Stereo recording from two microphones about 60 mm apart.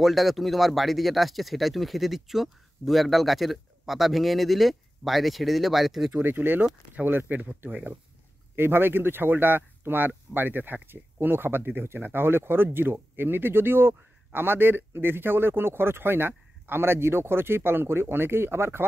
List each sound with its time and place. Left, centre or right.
0.0 s speech: centre
6.1 s speech: right
8.5 s speech: right